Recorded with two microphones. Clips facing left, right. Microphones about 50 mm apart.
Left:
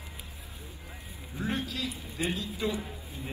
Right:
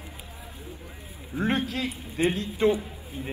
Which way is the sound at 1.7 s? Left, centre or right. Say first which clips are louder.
Right 5 dB; right.